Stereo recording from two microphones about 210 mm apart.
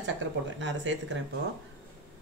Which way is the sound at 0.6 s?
60° right (ahead or behind).